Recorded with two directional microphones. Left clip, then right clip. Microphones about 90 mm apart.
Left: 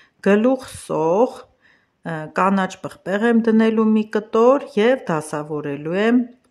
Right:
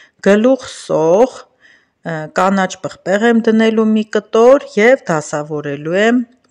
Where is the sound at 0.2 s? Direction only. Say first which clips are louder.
Right 6 dB; 30° right (ahead or behind).